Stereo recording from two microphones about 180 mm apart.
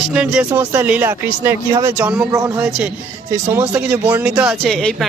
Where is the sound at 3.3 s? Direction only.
10° right (ahead or behind).